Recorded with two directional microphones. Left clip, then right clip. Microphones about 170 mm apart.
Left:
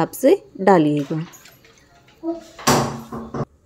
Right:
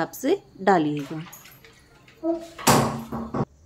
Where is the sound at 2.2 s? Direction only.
40° right (ahead or behind).